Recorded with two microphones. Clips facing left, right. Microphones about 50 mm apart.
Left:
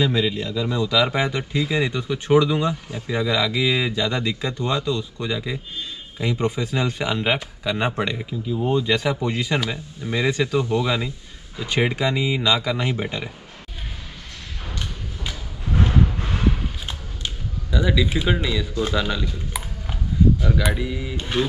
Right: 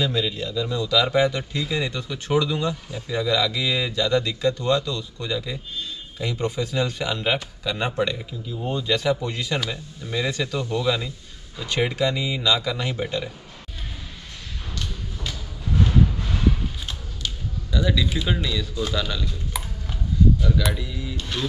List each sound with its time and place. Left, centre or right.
0.0 s a man's voice: centre
14.7 s music: left
20.4 s a man's voice: left